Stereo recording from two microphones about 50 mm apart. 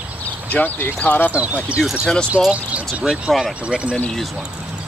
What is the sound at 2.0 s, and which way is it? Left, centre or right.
Speech, centre.